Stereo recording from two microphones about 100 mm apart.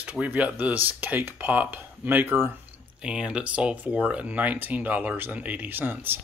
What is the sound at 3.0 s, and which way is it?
Speech, 10° right (ahead or behind).